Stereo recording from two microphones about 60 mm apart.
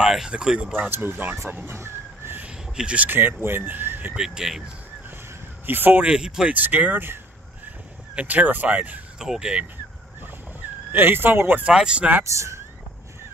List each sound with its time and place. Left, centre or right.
0.0 s speech: centre
0.8 s speech: right
1.7 s vehicle: right
2.4 s a sound: centre
3.1 s speech: right
4.2 s speech: centre
5.7 s speech: right
6.0 s speech: centre
6.5 s speech: right
8.2 s speech: right
9.2 s speech: centre
10.9 s speech: right
11.6 s speech: centre
12.2 s speech: right